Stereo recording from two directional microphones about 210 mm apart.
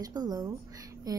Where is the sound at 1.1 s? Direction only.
20° right (ahead or behind).